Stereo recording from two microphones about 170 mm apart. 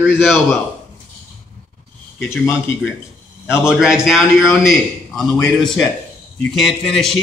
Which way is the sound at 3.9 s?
5° right (ahead or behind).